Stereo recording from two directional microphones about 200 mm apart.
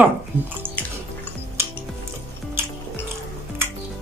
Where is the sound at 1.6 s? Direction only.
10° right (ahead or behind).